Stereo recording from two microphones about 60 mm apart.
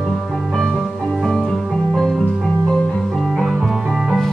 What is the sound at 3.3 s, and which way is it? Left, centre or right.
Music, centre.